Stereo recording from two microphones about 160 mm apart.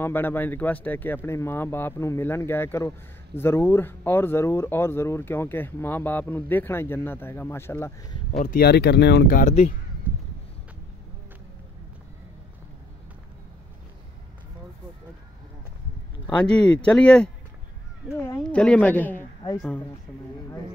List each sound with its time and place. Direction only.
0.0 s speech: 15° left (ahead or behind)
8.5 s speech: 85° left
9.4 s speech: 50° left (ahead or behind)
16.3 s speech: 5° left (ahead or behind)
18.5 s speech: 5° left (ahead or behind)